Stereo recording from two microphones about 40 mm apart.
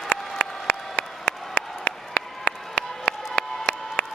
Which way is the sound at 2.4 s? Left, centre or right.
Left.